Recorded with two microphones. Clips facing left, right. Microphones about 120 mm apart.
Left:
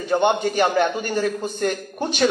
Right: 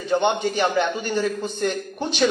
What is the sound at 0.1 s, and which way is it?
A man's voice, 45° left (ahead or behind).